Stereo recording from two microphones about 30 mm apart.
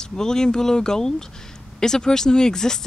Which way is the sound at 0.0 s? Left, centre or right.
Left.